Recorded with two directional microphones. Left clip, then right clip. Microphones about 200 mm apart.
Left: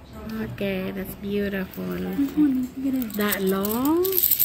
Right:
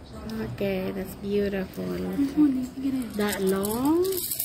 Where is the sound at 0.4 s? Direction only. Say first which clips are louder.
Even; 5° right (ahead or behind).